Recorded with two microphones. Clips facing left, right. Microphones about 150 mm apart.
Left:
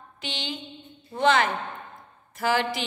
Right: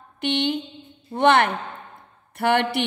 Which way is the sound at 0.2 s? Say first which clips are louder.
Right 12 dB; 60° right (ahead or behind).